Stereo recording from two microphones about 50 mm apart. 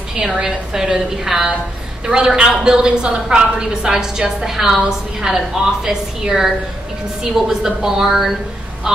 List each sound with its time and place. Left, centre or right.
0.1 s a woman's voice: centre